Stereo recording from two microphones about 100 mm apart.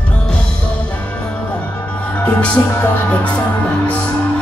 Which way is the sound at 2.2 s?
15° left (ahead or behind).